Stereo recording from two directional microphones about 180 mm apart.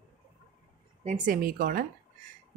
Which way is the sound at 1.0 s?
45° right (ahead or behind).